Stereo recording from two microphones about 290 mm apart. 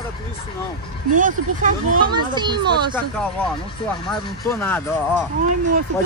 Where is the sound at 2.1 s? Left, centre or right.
Centre.